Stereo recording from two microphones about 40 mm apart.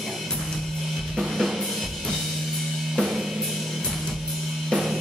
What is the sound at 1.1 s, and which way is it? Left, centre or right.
Drum kit, centre.